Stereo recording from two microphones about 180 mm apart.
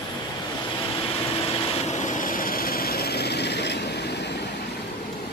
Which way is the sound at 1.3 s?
40° left (ahead or behind).